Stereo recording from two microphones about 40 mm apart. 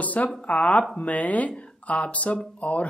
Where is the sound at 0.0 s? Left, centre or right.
Left.